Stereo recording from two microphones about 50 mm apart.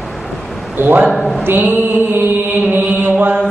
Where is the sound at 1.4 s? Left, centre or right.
Right.